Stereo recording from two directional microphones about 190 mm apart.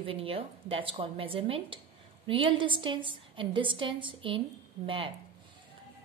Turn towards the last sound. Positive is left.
turn(degrees=-25)  # may be behind; listen again after turning